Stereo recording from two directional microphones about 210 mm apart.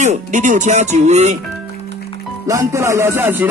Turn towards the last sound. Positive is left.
turn(degrees=-10)  # may be behind; listen again after turning